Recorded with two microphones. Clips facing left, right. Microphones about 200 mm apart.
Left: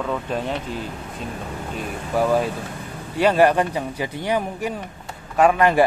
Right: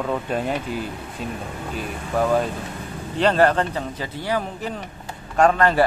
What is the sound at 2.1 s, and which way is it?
A man's voice, 10° left (ahead or behind).